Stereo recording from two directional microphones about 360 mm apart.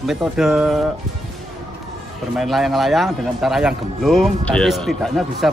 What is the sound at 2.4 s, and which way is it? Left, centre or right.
Speech, centre.